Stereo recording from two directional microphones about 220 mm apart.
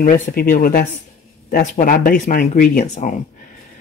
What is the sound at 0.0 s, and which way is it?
Speech, 40° left (ahead or behind).